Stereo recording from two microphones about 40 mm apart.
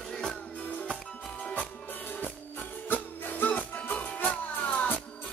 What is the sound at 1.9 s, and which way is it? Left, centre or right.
Music, left.